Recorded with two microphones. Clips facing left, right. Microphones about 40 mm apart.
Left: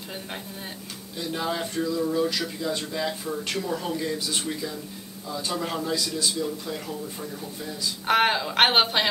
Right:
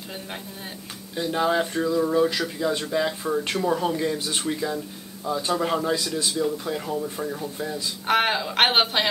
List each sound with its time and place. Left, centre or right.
1.1 s speech: right
3.3 s speech: right
5.5 s speech: centre
6.9 s speech: right
8.1 s speech: centre